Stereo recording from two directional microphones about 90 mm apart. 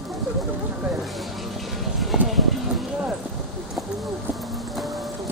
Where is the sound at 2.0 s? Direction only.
Centre (ahead or behind).